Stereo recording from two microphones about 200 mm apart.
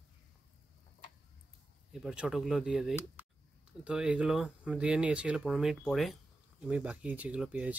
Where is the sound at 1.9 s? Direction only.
Centre (ahead or behind).